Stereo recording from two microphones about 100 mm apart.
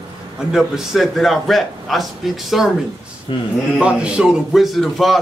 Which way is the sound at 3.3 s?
55° left (ahead or behind).